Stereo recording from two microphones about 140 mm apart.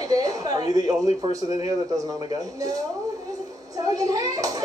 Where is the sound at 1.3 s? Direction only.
25° right (ahead or behind).